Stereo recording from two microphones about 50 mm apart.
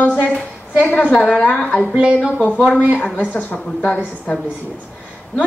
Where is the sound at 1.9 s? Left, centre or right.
Right.